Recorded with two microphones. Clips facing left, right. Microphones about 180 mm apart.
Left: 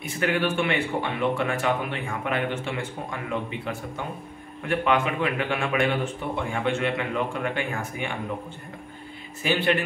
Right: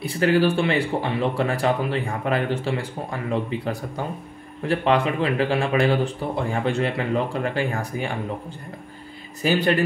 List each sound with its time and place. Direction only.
0.0 s speech: 35° right (ahead or behind)
9.4 s speech: 40° right (ahead or behind)